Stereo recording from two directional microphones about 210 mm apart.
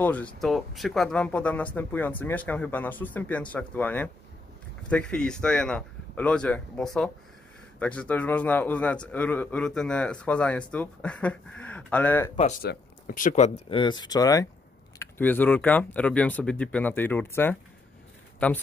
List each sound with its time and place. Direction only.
0.0 s a man's voice: 5° left (ahead or behind)
12.6 s a man's voice: 40° left (ahead or behind); by 17.6 s 10° left (ahead or behind)